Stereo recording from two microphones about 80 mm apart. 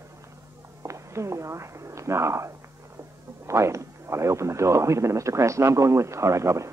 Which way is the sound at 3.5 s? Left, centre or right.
Right.